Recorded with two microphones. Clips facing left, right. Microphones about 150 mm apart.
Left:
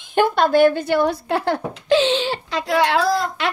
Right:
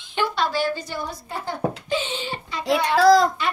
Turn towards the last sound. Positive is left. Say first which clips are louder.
# right 5 dB
turn(degrees=85)